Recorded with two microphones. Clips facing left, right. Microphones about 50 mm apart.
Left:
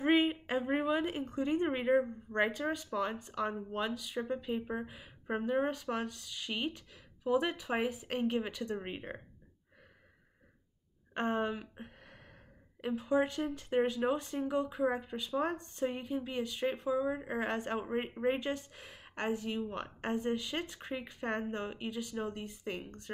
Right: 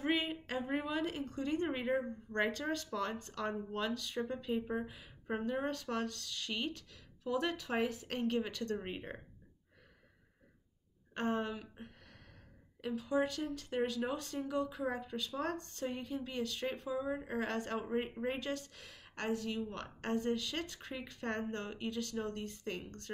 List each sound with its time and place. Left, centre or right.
0.0 s a woman's voice: left
11.1 s speech: left